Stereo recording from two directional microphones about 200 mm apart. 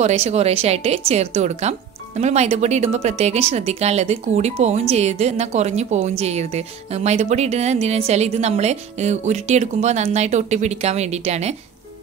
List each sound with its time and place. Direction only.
0.0 s speech: 30° right (ahead or behind)